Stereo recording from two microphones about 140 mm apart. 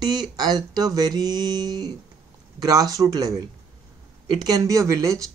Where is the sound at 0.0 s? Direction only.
30° right (ahead or behind).